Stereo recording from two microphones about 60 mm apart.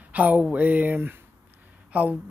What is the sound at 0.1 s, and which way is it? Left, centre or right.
Speech, right.